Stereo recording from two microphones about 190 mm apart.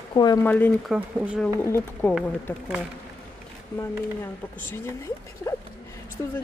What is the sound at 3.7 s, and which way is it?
Speech, 10° left (ahead or behind).